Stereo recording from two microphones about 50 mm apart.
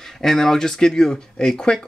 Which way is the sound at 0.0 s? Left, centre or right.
Centre.